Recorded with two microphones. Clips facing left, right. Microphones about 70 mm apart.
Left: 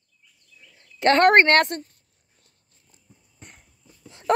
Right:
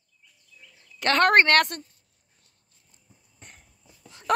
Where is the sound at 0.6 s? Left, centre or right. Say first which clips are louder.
Even; centre.